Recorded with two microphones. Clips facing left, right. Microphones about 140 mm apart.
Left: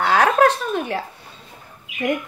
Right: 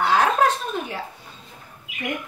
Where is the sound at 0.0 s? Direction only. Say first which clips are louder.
Left 3 dB; 70° left (ahead or behind).